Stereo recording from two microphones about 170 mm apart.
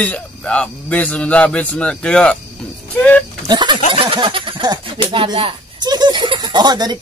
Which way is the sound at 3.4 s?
25° right (ahead or behind).